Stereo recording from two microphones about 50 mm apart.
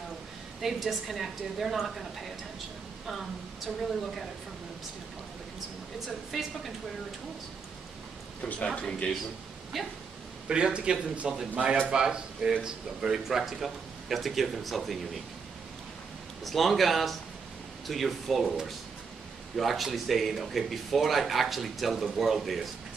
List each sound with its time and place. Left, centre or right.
0.6 s speech: centre
5.9 s speech: centre
8.6 s a man's voice: centre
9.7 s speech: centre
10.5 s speech: centre
16.4 s speech: centre